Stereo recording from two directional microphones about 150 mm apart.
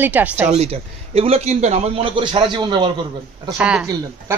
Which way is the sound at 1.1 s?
40° right (ahead or behind).